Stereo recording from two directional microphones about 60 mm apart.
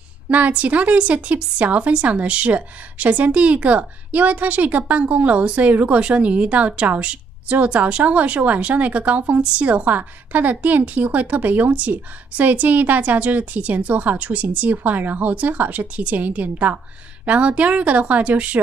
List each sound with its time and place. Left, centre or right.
0.3 s speech: right